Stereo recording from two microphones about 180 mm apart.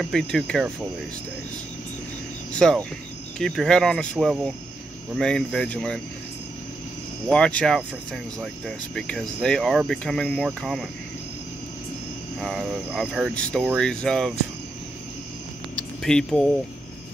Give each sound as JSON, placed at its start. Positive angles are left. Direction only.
{"t": 0.0, "sound": "speech", "side_deg": 0}
{"t": 2.5, "sound": "speech", "side_deg": 5}
{"t": 7.2, "sound": "speech", "side_deg": 5}
{"t": 12.4, "sound": "speech", "side_deg": 5}
{"t": 16.0, "sound": "speech", "side_deg": 5}